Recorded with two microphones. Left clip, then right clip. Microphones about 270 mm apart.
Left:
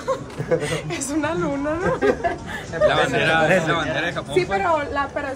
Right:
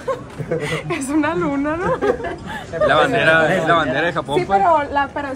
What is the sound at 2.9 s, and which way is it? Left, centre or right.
A man's voice, centre.